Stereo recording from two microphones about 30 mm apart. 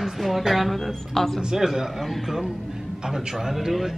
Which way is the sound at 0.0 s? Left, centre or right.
Centre.